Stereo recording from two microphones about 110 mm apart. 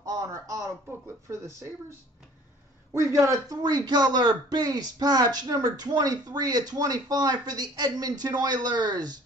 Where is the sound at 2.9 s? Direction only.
25° right (ahead or behind).